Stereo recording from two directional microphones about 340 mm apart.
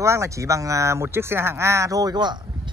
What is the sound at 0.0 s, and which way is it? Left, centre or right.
Speech, centre.